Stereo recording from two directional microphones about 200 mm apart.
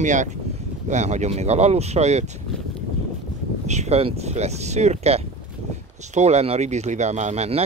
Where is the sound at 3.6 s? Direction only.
35° right (ahead or behind).